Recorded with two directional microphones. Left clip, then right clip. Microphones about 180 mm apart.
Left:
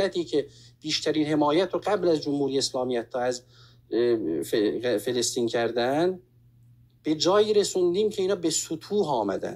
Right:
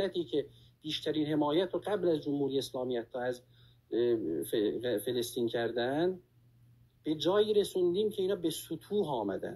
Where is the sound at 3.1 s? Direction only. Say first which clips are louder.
Left 8 dB; 25° left (ahead or behind).